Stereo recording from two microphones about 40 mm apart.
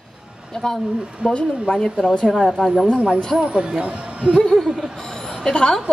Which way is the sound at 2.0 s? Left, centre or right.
Left.